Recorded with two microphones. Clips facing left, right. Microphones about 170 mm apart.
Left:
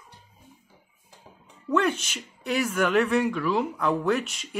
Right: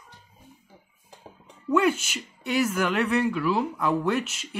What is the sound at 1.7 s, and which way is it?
A woman's voice, 5° right (ahead or behind).